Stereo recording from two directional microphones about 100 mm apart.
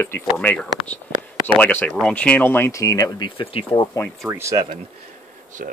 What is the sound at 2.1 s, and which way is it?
Speech, 15° left (ahead or behind).